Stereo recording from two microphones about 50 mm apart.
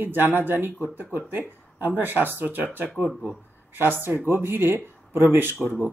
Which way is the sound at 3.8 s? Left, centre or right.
Right.